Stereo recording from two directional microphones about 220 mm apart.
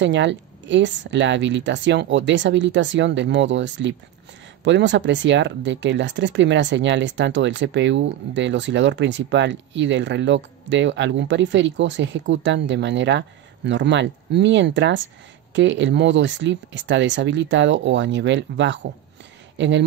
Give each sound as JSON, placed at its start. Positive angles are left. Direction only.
{"t": 0.0, "sound": "speech", "side_deg": -55}